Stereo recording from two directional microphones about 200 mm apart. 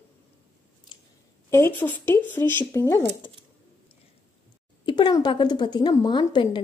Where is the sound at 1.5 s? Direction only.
10° left (ahead or behind).